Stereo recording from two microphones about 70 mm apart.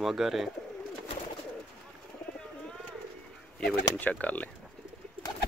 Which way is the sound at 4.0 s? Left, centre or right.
Left.